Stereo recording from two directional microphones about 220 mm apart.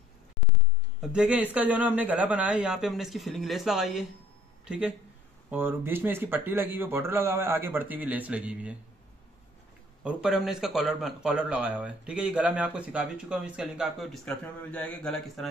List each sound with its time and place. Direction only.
1.0 s speech: 5° right (ahead or behind)
10.0 s speech: centre (ahead or behind)